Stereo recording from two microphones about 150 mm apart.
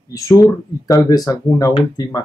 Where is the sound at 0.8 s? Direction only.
25° left (ahead or behind).